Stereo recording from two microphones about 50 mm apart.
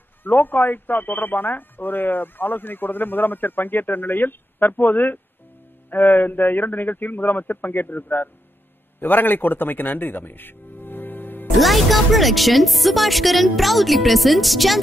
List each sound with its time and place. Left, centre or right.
0.2 s speech: left
11.5 s speech: centre